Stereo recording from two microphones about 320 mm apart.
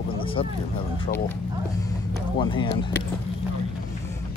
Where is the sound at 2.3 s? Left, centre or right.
Centre.